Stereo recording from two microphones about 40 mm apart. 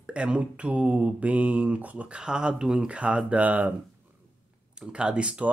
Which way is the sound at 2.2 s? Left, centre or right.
Right.